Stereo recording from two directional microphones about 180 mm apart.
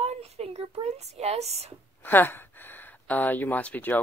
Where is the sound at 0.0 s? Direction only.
35° right (ahead or behind).